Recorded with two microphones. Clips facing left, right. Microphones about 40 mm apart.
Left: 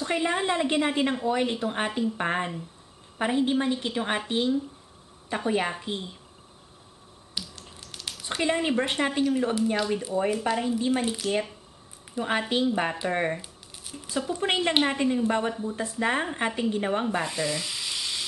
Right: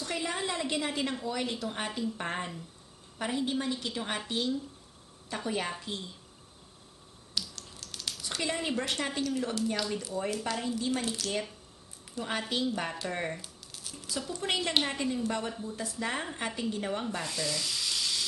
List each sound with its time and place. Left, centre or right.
0.0 s speech: left
7.3 s typing: centre
8.5 s speech: left